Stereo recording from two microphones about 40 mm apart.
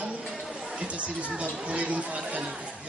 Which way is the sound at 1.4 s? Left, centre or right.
Right.